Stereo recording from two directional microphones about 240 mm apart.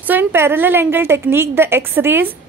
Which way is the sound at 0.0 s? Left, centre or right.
Centre.